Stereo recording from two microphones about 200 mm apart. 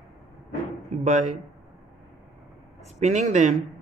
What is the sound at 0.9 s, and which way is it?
Speech, 35° right (ahead or behind).